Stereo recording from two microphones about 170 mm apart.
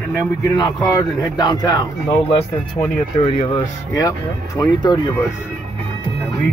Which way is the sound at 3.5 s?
20° left (ahead or behind).